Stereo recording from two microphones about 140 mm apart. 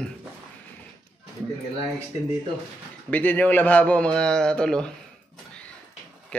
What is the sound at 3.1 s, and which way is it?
Speech, 10° left (ahead or behind).